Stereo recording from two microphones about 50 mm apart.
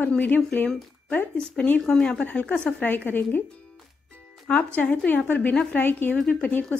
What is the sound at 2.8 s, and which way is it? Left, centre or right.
Speech, left.